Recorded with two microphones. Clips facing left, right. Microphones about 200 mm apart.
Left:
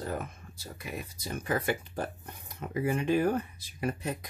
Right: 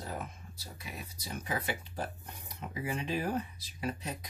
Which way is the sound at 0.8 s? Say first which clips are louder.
Left 7 dB; 50° left (ahead or behind).